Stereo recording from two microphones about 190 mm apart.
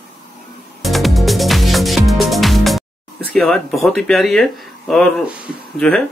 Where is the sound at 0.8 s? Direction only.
Centre (ahead or behind).